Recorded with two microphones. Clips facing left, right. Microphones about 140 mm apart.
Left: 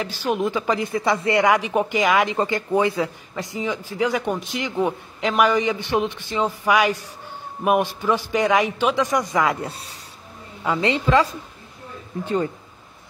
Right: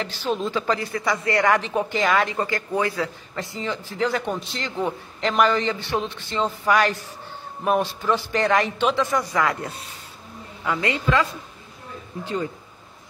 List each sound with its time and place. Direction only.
0.0 s a man's voice: 10° left (ahead or behind)
1.4 s a man's voice: 15° left (ahead or behind)
9.7 s a woman's voice: 35° left (ahead or behind)